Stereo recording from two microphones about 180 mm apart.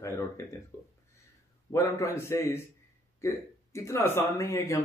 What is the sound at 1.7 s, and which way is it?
Speech, 15° left (ahead or behind).